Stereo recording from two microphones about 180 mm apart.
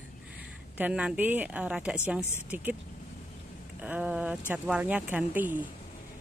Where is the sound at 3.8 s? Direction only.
10° right (ahead or behind).